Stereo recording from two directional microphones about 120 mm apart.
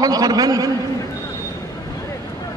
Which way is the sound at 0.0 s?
30° right (ahead or behind).